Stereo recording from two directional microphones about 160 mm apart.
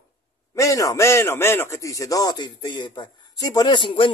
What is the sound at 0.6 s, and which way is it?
A man's voice, 20° left (ahead or behind).